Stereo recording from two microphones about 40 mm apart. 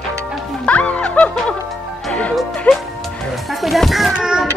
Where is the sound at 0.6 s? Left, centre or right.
Left.